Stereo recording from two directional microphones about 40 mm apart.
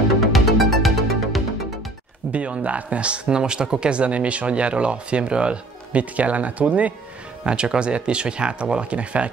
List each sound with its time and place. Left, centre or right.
0.3 s music: centre
2.3 s speech: right
7.4 s speech: right